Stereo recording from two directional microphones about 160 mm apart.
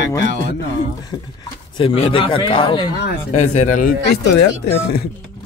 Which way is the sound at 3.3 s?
45° left (ahead or behind).